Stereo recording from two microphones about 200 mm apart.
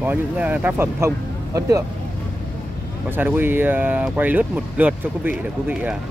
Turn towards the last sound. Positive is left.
turn(degrees=-10)  # may be behind; listen again after turning